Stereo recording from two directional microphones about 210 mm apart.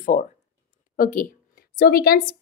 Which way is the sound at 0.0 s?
40° left (ahead or behind).